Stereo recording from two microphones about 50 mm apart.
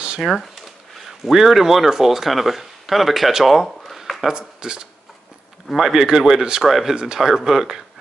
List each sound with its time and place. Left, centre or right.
0.2 s speech: centre
4.3 s speech: centre
6.7 s speech: centre